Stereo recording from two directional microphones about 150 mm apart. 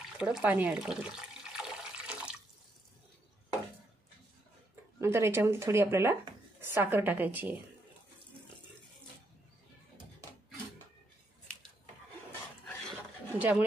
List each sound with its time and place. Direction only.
0.2 s speech: 5° right (ahead or behind)
1.6 s water: 5° right (ahead or behind)
4.9 s speech: 15° right (ahead or behind)
13.4 s speech: 10° right (ahead or behind)